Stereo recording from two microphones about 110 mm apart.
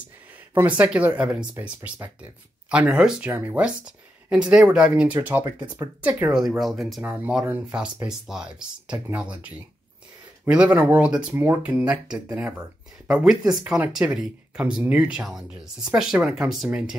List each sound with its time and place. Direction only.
0.6 s speech: 15° right (ahead or behind)
2.7 s speech: 10° right (ahead or behind)
6.0 s speech: 20° right (ahead or behind)
6.6 s speech: centre (ahead or behind)
7.0 s speech: 15° right (ahead or behind)